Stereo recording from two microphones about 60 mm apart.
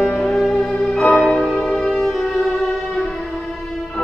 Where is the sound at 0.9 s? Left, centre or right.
Centre.